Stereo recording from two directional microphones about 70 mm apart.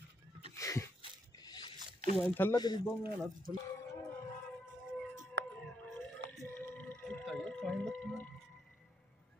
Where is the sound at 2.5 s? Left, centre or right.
Left.